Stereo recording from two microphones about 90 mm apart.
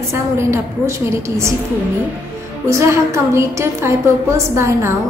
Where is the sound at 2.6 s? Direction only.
35° right (ahead or behind).